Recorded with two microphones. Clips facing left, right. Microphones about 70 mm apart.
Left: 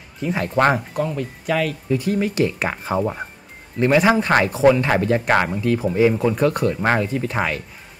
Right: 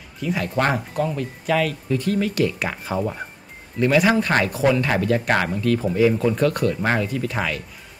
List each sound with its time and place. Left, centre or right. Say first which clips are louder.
0.2 s speech: left 3 dB; left
0.9 s speech: even; centre
1.9 s speech: left 1 dB; centre; by 7.6 s left